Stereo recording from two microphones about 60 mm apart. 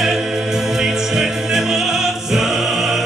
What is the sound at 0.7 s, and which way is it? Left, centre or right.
Music, centre.